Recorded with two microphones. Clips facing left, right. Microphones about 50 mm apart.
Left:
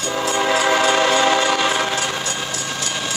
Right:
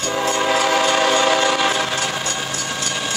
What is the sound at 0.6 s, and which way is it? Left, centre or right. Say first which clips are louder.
Train: left 2 dB; left.